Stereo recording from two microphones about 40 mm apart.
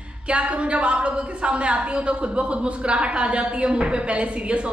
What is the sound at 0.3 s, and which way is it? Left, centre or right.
A woman's voice, right.